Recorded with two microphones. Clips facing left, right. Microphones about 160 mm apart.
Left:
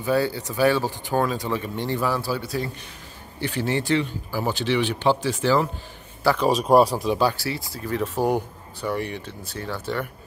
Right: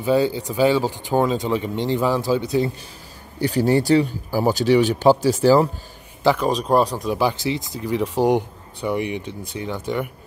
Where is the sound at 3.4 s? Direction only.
40° right (ahead or behind).